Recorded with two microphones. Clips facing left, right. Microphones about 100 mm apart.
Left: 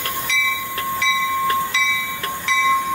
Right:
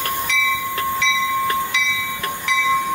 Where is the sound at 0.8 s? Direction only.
20° right (ahead or behind).